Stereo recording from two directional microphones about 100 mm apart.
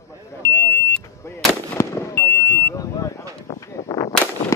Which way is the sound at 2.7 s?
35° left (ahead or behind).